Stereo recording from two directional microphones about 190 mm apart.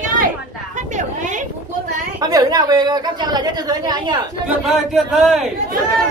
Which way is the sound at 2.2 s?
20° right (ahead or behind).